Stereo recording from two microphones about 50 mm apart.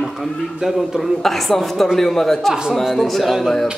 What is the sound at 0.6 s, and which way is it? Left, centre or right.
Speech, centre.